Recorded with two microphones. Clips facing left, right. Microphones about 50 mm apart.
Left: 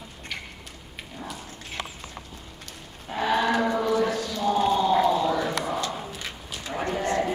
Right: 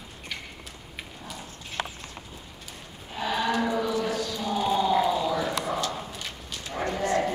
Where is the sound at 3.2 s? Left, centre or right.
Left.